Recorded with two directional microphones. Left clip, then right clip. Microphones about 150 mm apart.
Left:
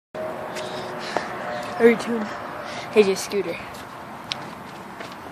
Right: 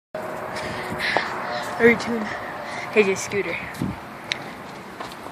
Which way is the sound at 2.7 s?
20° left (ahead or behind).